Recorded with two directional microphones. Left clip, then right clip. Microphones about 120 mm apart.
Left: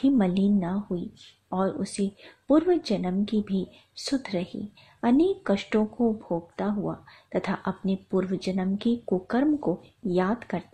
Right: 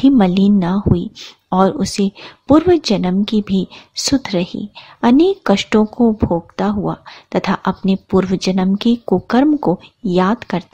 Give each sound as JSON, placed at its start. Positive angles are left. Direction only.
{"t": 0.0, "sound": "speech", "side_deg": -40}